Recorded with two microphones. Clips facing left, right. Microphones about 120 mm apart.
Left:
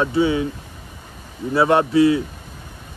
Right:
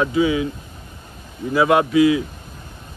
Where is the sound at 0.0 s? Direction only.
30° left (ahead or behind).